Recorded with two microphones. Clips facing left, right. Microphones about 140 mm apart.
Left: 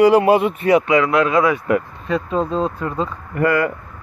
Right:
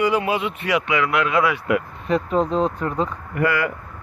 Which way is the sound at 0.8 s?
35° left (ahead or behind).